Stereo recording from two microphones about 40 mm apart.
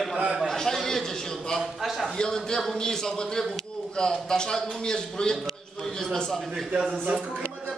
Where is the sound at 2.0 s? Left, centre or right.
Centre.